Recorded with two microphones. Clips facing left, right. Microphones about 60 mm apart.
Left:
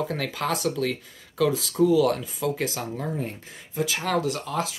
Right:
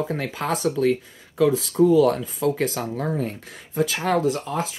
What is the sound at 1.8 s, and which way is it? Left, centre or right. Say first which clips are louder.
Speech: right 3 dB; right.